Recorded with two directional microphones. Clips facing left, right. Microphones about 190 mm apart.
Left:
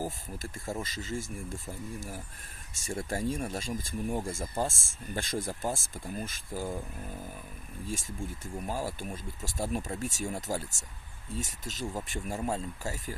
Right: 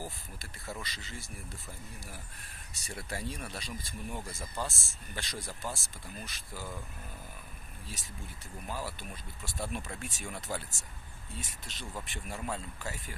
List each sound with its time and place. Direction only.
0.0 s speech: 45° left (ahead or behind)
7.8 s speech: 45° left (ahead or behind)